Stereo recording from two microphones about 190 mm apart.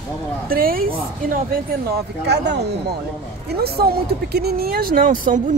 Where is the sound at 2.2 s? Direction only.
60° right (ahead or behind).